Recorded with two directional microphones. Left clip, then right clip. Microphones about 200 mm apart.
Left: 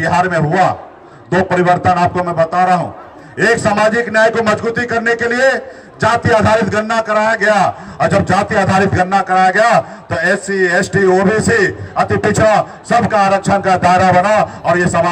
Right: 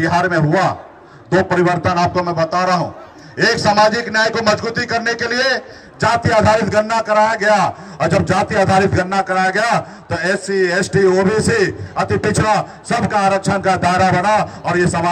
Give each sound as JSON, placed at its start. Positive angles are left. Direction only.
{"t": 0.0, "sound": "a man's voice", "side_deg": -25}